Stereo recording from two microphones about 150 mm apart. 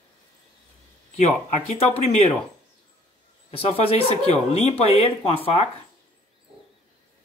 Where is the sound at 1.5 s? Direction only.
45° left (ahead or behind).